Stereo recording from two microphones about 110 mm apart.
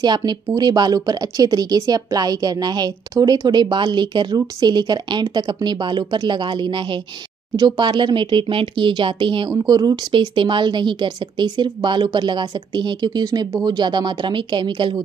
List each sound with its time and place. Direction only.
0.0 s speech: 40° right (ahead or behind)